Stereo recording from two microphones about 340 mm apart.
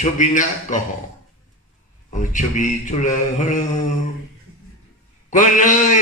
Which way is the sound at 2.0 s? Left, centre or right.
Left.